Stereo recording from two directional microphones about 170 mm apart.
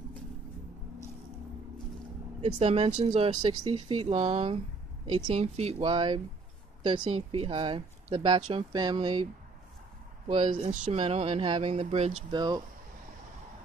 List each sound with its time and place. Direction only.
2.4 s speech: 35° right (ahead or behind)
10.5 s speech: 50° right (ahead or behind)
12.3 s speech: 25° right (ahead or behind)